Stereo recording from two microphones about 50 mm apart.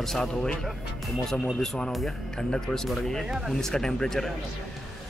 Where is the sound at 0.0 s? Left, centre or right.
Centre.